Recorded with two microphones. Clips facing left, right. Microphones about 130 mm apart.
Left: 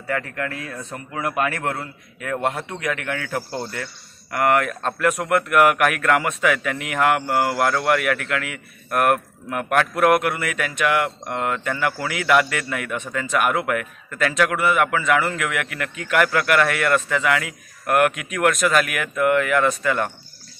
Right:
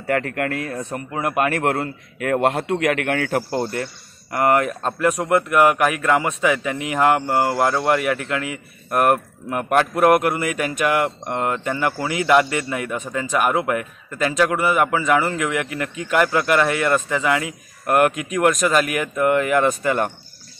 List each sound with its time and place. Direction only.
0.0 s a man's voice: 60° right (ahead or behind)
3.7 s speech: 35° right (ahead or behind)